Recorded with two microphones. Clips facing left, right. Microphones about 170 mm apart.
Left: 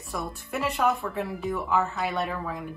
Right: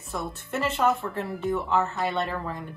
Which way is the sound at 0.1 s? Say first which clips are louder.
Right 1 dB; centre (ahead or behind).